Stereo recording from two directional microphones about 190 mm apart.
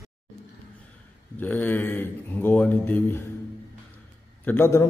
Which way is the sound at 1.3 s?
10° left (ahead or behind).